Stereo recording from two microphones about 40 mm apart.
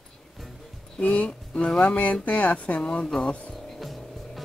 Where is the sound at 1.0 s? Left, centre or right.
Left.